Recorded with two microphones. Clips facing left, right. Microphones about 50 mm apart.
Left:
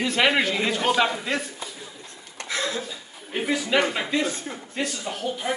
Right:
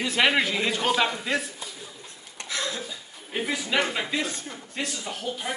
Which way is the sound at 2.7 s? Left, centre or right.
Centre.